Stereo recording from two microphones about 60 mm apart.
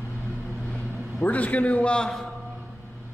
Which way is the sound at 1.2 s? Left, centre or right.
Left.